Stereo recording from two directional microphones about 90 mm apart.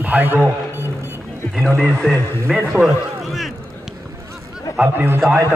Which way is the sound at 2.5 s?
Centre (ahead or behind).